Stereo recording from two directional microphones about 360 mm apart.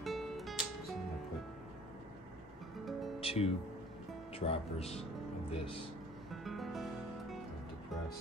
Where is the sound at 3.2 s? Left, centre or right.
Centre.